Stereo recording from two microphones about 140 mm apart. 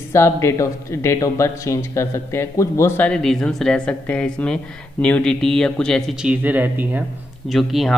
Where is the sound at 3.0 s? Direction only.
5° left (ahead or behind).